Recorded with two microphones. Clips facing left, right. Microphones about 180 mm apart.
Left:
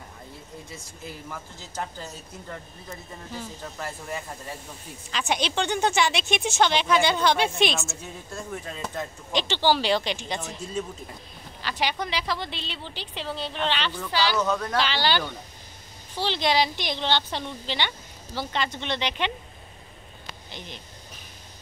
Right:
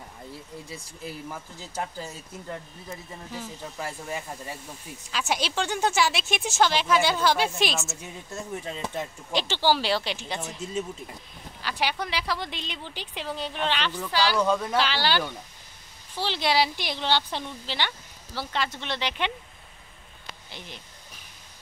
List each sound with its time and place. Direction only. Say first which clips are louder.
1.3 s a woman's voice: right 1 dB; 10° right (ahead or behind)
3.3 s a woman's voice: even; 10° right (ahead or behind)
8.0 s speech: even; 20° right (ahead or behind)
9.3 s a woman's voice: left 1 dB; 5° right (ahead or behind)
11.6 s a woman's voice: left 1 dB; 10° right (ahead or behind)
20.4 s speech: left 2 dB; 5° right (ahead or behind)